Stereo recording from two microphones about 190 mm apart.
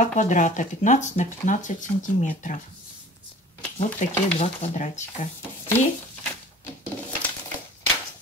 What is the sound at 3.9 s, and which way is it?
Speech, 35° left (ahead or behind).